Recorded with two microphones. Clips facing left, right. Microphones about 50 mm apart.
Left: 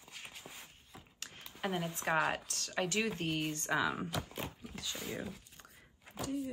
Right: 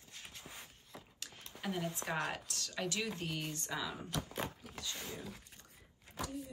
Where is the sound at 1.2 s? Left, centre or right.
Left.